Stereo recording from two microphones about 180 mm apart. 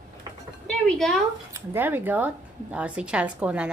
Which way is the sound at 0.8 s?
5° left (ahead or behind).